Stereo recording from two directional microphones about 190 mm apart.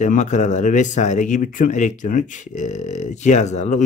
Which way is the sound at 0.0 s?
40° left (ahead or behind).